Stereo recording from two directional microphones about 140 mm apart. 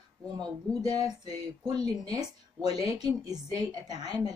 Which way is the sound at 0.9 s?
30° right (ahead or behind).